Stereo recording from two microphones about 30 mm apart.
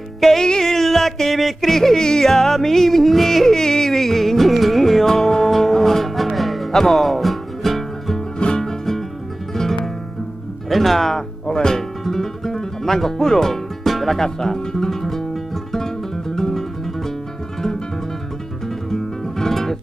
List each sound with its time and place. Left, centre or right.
0.4 s a sound: centre
1.7 s speech: centre
2.2 s music: centre
5.0 s music: centre
8.5 s music: centre
10.7 s speech: centre
11.4 s music: left
13.8 s music: centre
14.2 s speech: centre
15.7 s music: centre
18.9 s music: centre